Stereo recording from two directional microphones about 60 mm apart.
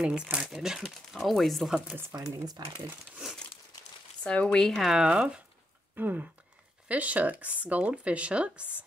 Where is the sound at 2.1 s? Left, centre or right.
Right.